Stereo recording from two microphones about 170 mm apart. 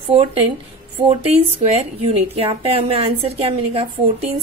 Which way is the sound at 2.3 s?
35° right (ahead or behind).